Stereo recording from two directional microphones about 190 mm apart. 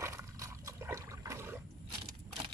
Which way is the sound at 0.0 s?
15° right (ahead or behind).